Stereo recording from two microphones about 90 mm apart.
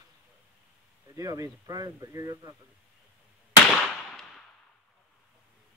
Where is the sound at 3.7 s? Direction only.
5° left (ahead or behind).